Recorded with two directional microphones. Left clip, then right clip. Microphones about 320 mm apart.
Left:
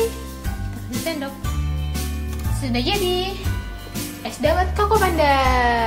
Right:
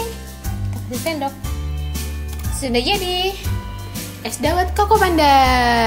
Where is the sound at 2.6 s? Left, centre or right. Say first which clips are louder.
Right 3 dB; centre.